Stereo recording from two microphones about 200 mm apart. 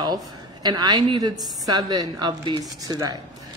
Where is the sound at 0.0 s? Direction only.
20° right (ahead or behind).